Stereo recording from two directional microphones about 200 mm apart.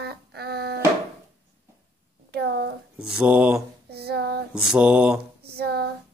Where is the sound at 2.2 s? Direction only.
55° right (ahead or behind).